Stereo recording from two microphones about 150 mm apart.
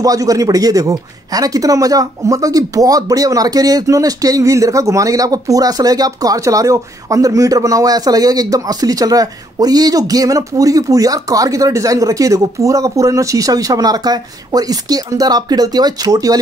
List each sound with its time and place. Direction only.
0.0 s speech: 25° right (ahead or behind)